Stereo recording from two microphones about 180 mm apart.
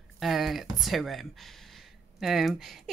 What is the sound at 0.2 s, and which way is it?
Speech, centre (ahead or behind).